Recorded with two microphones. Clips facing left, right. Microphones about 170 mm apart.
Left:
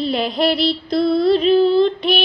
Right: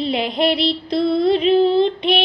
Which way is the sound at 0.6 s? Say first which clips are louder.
Left 1 dB; 25° right (ahead or behind).